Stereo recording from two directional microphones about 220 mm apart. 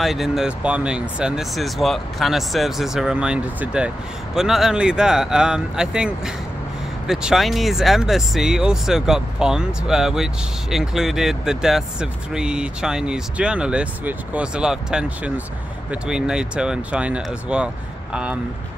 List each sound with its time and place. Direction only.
0.0 s speech: centre (ahead or behind)